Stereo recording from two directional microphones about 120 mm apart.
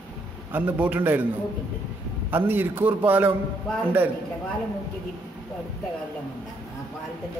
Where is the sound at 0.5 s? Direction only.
15° right (ahead or behind).